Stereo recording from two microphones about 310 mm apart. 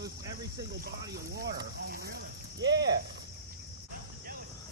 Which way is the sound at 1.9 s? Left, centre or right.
Right.